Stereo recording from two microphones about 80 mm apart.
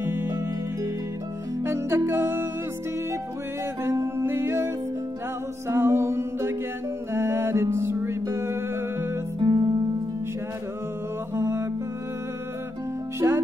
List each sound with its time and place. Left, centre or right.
0.0 s music: right
1.6 s music: right
3.8 s music: right
5.7 s music: right
9.4 s music: right
11.3 s music: right
13.2 s music: right